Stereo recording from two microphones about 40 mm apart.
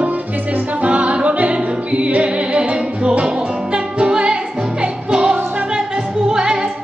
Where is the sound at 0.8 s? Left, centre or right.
Right.